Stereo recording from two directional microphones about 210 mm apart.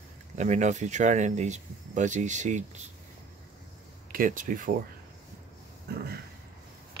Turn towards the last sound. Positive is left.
turn(degrees=-50)  # may be behind; listen again after turning